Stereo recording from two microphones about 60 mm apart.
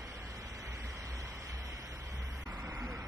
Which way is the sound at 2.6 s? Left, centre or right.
Right.